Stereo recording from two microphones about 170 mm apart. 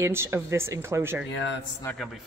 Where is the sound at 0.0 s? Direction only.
15° right (ahead or behind).